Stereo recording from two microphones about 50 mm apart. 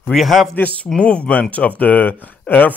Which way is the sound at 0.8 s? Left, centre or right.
Centre.